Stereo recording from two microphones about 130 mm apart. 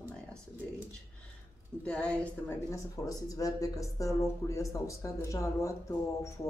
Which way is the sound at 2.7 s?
25° left (ahead or behind).